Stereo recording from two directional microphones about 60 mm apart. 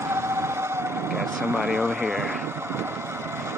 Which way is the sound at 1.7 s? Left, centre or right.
Right.